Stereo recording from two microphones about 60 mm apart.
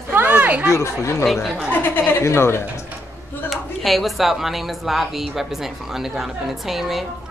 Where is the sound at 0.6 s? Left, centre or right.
Left.